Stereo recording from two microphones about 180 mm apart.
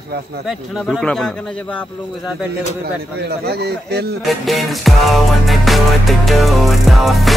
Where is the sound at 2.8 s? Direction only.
60° right (ahead or behind).